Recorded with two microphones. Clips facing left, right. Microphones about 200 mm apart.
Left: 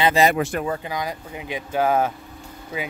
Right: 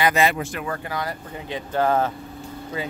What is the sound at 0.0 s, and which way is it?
Speech, 30° left (ahead or behind).